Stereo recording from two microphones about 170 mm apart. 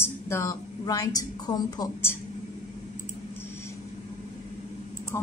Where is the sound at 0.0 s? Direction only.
15° left (ahead or behind).